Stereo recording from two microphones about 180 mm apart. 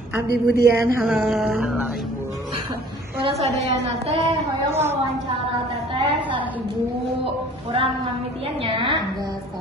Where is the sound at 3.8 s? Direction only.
35° right (ahead or behind).